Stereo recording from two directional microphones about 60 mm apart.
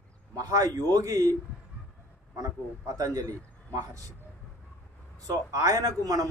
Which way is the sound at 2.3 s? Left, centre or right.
Right.